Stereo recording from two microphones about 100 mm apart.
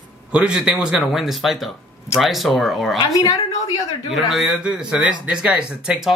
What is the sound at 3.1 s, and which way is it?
Speech, 35° left (ahead or behind).